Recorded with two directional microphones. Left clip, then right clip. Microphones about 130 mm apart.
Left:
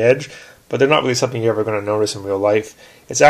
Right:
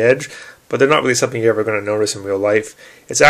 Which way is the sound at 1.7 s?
15° right (ahead or behind).